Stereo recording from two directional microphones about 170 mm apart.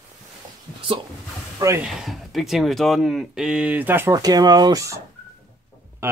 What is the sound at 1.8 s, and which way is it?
Speech, centre (ahead or behind).